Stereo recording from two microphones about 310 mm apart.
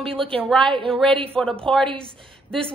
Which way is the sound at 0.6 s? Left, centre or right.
Centre.